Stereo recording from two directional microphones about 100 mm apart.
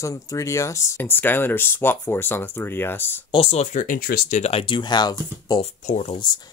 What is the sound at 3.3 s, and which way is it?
Speech, 80° left.